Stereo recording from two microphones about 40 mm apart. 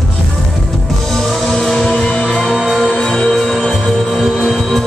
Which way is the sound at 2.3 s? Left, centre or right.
Centre.